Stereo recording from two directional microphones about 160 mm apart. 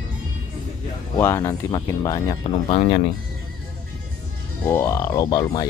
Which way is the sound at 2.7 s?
35° left (ahead or behind).